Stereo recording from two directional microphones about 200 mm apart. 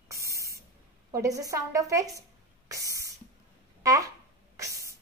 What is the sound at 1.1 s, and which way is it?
A woman's voice, 15° right (ahead or behind).